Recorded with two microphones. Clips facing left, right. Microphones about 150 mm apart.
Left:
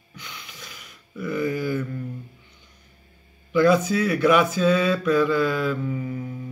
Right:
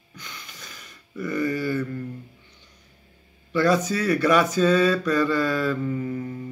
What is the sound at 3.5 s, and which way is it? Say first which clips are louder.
Speech: left 3 dB; 10° left (ahead or behind).